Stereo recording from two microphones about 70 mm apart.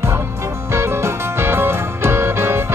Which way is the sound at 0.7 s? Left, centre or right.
Right.